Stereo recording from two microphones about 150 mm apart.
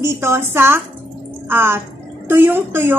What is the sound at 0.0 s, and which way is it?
A woman's voice, 15° right (ahead or behind).